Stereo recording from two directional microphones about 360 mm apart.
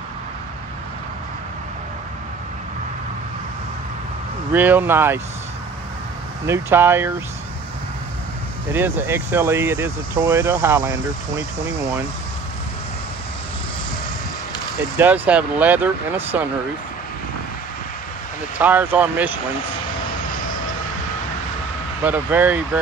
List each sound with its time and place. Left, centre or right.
4.5 s speech: centre
6.4 s speech: centre
8.7 s speech: centre
15.0 s speech: centre
18.6 s speech: centre
22.0 s speech: centre